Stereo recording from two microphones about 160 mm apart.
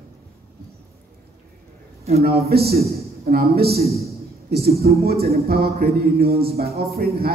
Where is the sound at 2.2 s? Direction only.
75° right (ahead or behind).